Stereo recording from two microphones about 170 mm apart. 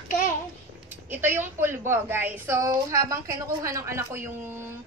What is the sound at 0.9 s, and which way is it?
A woman's voice, 10° right (ahead or behind).